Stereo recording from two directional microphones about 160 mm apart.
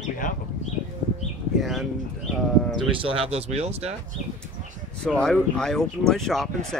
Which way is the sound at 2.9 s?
35° right (ahead or behind).